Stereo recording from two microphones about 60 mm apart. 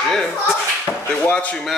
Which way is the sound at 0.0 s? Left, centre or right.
Centre.